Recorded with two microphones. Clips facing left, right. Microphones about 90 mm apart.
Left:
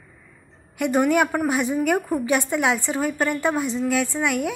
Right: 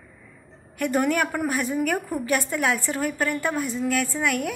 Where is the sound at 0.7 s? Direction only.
15° left (ahead or behind).